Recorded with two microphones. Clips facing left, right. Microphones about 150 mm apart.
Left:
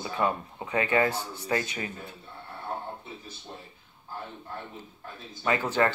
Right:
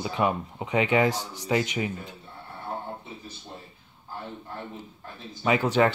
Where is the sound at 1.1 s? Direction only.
90° right.